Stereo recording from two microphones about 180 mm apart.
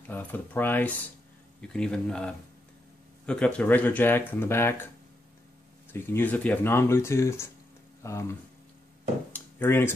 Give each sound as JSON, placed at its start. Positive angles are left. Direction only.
{"t": 0.1, "sound": "speech", "side_deg": 10}
{"t": 5.9, "sound": "speech", "side_deg": 10}
{"t": 9.3, "sound": "speech", "side_deg": 10}